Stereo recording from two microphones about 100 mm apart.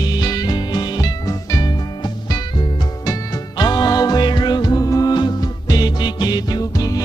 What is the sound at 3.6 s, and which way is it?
Music, 40° left (ahead or behind).